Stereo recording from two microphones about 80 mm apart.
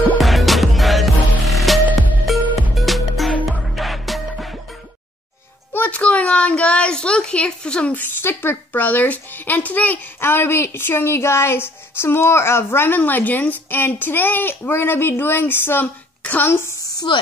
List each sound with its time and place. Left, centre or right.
0.2 s music: centre
5.7 s speech: left
16.8 s a sound: left